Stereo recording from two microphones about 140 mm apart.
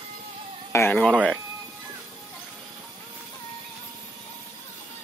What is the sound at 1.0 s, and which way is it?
Speech, 5° left (ahead or behind).